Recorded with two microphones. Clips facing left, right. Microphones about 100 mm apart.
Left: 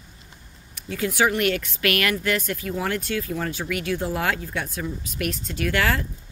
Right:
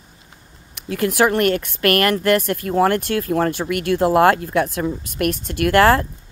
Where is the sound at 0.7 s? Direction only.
60° right (ahead or behind).